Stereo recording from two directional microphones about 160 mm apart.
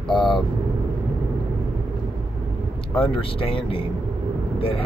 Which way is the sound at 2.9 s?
35° left (ahead or behind).